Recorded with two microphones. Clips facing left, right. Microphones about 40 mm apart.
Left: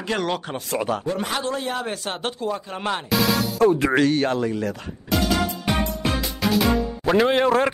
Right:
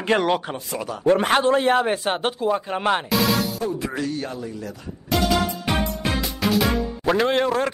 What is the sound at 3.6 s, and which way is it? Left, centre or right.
Speech, left.